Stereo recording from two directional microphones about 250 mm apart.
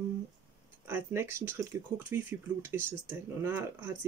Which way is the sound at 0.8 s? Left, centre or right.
Centre.